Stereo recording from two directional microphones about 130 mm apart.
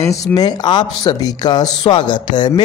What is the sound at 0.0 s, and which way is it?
Speech, 25° left (ahead or behind).